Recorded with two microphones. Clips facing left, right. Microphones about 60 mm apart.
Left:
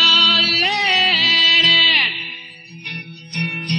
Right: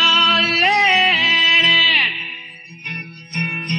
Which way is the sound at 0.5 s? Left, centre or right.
Right.